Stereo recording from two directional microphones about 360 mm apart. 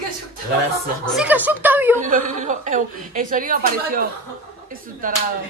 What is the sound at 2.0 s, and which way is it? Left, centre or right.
A woman's voice, right.